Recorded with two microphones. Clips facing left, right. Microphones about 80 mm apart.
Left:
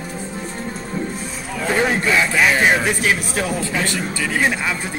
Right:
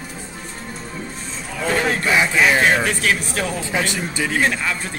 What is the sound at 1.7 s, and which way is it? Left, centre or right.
Speech, centre.